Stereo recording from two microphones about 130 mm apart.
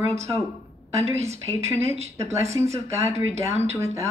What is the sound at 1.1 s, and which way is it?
Speech, 20° right (ahead or behind).